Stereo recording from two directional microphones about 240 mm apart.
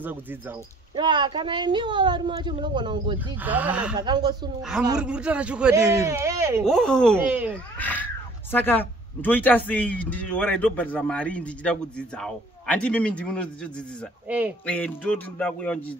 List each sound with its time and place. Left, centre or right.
0.9 s speech: centre
3.4 s speech: centre
4.0 s speech: centre
4.6 s speech: centre
6.6 s speech: centre
7.8 s speech: centre
14.3 s speech: centre
14.7 s speech: centre